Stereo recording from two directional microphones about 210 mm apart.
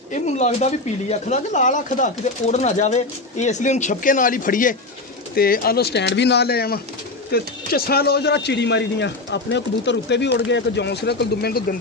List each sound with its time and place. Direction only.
0.1 s a man's voice: 35° left (ahead or behind); by 11.6 s 50° left (ahead or behind)